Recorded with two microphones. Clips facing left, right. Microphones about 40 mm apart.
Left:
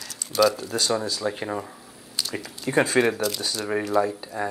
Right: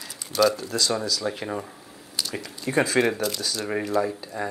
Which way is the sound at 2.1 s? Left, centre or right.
Centre.